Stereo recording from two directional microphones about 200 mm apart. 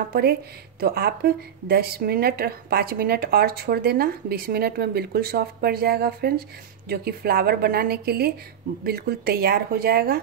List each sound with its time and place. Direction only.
0.1 s a woman's voice: 50° right (ahead or behind)